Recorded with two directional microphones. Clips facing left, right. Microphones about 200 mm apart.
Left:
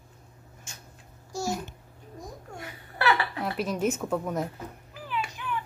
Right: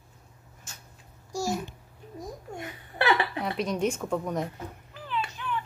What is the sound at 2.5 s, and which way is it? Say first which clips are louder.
Laughter: right 4 dB; 20° right (ahead or behind).